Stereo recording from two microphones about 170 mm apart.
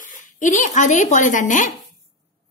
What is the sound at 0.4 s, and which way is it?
A woman's voice, 45° left (ahead or behind).